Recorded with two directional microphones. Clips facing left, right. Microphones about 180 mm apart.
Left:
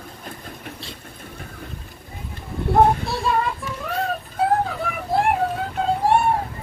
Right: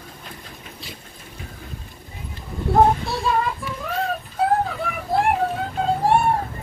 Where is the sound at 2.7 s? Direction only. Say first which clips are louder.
Even; centre (ahead or behind).